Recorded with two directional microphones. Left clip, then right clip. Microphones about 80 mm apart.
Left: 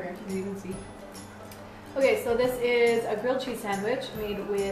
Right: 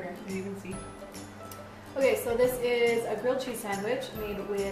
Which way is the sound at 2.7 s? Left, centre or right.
Centre.